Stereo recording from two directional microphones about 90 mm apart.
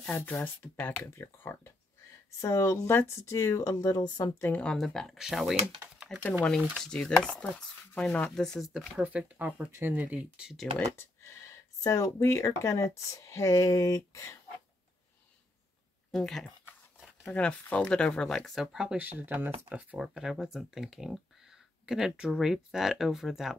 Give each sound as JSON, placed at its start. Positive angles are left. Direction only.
{"t": 0.6, "sound": "speech", "side_deg": 25}
{"t": 2.4, "sound": "speech", "side_deg": 40}
{"t": 4.4, "sound": "speech", "side_deg": 20}
{"t": 4.6, "sound": "speech", "side_deg": 5}
{"t": 6.8, "sound": "speech", "side_deg": 5}
{"t": 9.0, "sound": "speech", "side_deg": -15}
{"t": 9.7, "sound": "speech", "side_deg": -25}
{"t": 11.0, "sound": "speech", "side_deg": 35}
{"t": 16.1, "sound": "speech", "side_deg": 5}
{"t": 19.0, "sound": "speech", "side_deg": -20}
{"t": 20.0, "sound": "speech", "side_deg": -5}